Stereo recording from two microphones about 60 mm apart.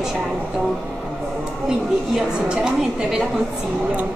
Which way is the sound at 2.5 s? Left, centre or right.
Centre.